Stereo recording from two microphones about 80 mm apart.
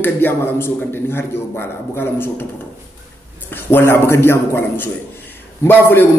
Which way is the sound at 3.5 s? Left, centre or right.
Left.